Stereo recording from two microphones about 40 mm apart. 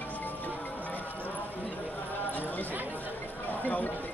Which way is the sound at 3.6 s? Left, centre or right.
Left.